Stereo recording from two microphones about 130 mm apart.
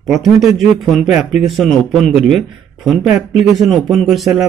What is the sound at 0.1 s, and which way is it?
Speech, centre (ahead or behind).